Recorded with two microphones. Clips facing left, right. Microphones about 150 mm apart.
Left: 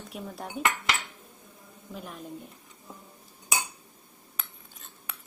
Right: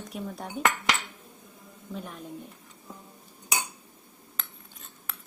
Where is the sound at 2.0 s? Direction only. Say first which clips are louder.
Right 1 dB; centre (ahead or behind).